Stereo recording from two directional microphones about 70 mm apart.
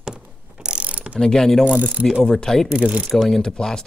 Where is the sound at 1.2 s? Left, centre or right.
Centre.